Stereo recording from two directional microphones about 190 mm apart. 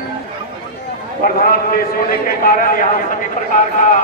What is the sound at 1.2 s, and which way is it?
A man's voice, 50° left (ahead or behind).